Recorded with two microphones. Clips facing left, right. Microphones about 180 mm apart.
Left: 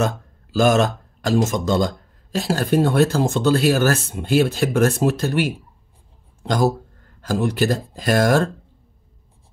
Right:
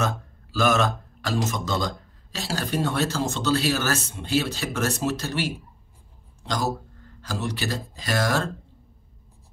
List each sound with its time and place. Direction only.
0.0 s speech: 40° left (ahead or behind)